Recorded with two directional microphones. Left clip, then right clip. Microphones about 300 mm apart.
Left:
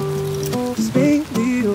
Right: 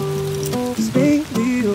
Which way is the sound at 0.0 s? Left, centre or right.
Centre.